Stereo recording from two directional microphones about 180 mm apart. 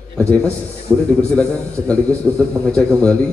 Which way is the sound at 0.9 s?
10° left (ahead or behind).